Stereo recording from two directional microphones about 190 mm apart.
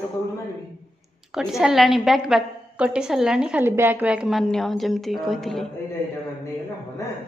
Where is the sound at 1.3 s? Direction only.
Centre (ahead or behind).